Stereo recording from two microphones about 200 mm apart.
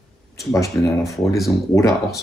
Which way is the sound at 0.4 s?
15° left (ahead or behind).